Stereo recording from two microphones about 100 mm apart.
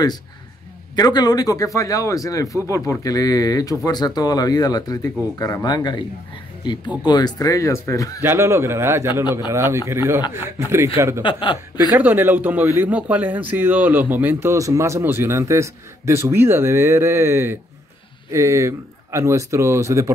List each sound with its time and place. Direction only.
0.9 s speech: 40° left (ahead or behind)
7.1 s speech: 45° left (ahead or behind)
8.2 s a man's voice: 25° right (ahead or behind)
11.2 s speech: 55° left (ahead or behind)
11.9 s a man's voice: 20° right (ahead or behind)
14.5 s a man's voice: 30° right (ahead or behind)